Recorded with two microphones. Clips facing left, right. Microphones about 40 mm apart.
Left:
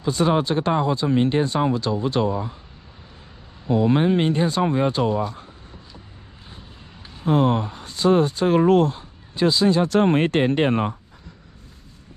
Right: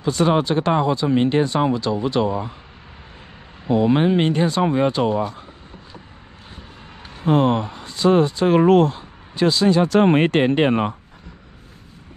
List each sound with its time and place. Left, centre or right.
0.0 s speech: right
3.6 s speech: right
4.7 s speech: right
7.2 s speech: right